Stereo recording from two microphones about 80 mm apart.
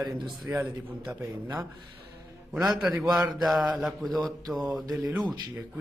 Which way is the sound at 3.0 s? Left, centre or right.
Centre.